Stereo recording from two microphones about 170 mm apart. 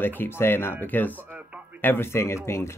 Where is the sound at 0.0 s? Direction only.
10° left (ahead or behind).